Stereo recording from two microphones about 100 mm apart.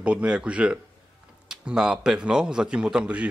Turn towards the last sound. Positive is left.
turn(degrees=-10)  # may be behind; listen again after turning